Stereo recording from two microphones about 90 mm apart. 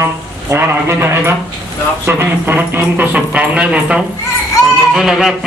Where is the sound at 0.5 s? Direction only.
30° right (ahead or behind).